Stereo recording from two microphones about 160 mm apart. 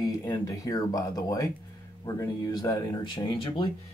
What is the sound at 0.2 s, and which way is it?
Speech, 20° left (ahead or behind).